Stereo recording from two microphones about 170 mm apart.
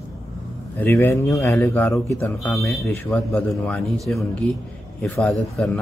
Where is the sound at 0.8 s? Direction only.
15° left (ahead or behind).